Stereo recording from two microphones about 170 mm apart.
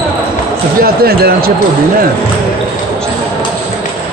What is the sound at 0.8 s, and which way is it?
Speech, 65° right (ahead or behind).